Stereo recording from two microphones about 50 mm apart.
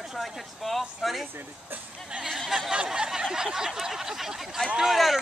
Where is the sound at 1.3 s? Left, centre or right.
Right.